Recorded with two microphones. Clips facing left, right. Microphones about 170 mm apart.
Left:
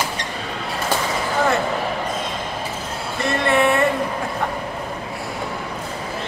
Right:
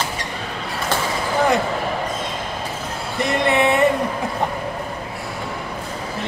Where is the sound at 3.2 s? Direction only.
20° right (ahead or behind).